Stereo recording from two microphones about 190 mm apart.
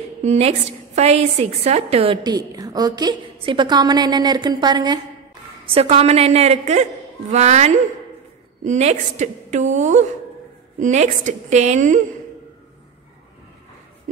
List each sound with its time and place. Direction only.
0.2 s a woman's voice: 35° right (ahead or behind)
5.7 s a woman's voice: 30° right (ahead or behind)